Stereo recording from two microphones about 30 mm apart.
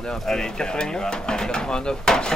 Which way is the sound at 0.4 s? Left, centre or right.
Left.